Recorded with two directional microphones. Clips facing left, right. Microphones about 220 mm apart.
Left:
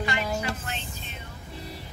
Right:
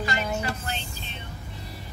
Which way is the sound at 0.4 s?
35° right (ahead or behind).